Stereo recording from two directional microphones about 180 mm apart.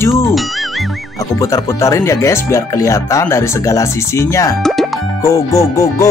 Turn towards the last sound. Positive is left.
turn(degrees=15)  # may be behind; listen again after turning